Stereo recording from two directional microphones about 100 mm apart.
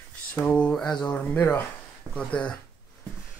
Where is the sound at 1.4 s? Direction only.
20° left (ahead or behind).